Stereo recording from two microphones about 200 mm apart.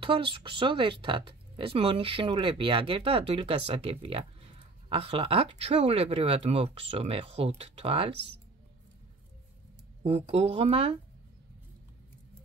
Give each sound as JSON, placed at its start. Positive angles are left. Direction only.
{"t": 0.0, "sound": "speech", "side_deg": -25}
{"t": 10.0, "sound": "speech", "side_deg": -30}